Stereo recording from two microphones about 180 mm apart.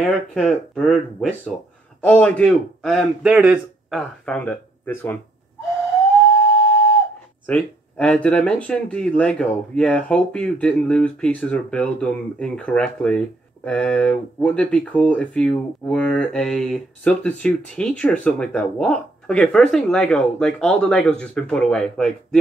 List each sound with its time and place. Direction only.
0.0 s speech: 5° left (ahead or behind)
7.4 s speech: 5° left (ahead or behind)